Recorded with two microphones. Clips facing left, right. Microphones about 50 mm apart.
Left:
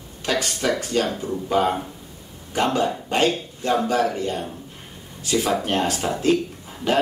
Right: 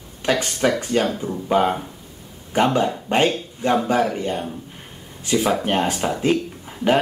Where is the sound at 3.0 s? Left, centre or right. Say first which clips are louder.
Right 2 dB; right.